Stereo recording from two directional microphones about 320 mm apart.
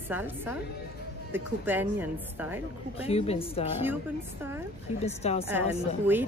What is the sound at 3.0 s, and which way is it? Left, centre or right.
Speech, centre.